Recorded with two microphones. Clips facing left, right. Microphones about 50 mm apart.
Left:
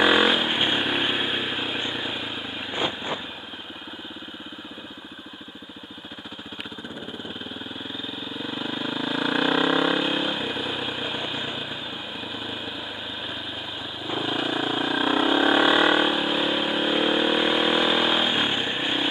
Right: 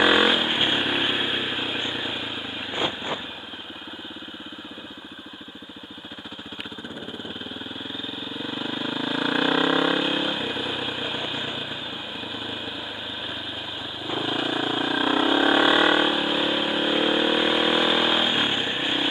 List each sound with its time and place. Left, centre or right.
0.0 s vehicle: centre
8.9 s vehicle: centre
14.1 s vehicle: centre